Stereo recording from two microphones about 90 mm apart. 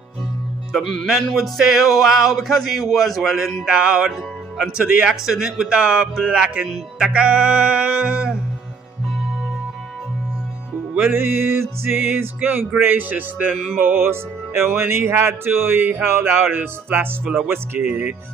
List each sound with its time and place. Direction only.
0.7 s speech: centre (ahead or behind)
11.1 s speech: 25° right (ahead or behind)